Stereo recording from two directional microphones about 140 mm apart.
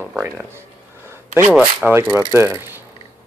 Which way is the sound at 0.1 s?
15° right (ahead or behind).